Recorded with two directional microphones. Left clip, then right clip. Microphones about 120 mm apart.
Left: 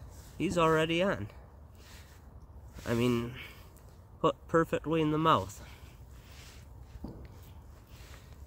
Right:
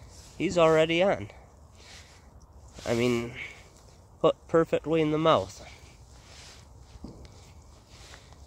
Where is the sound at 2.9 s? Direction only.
40° left (ahead or behind).